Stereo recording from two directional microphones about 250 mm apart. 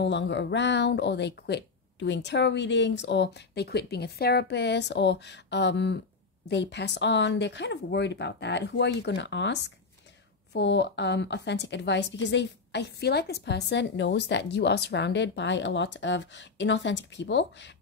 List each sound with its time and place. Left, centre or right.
0.0 s a woman's voice: left